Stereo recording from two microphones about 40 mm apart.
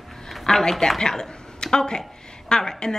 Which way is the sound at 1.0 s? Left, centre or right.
Centre.